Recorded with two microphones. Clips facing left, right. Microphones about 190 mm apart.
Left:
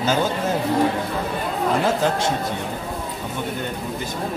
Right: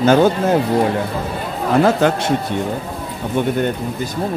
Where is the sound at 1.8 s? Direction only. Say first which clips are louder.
Right 5 dB; 65° right (ahead or behind).